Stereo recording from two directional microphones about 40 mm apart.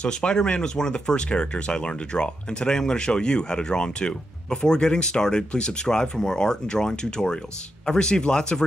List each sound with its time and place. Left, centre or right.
0.0 s speech: left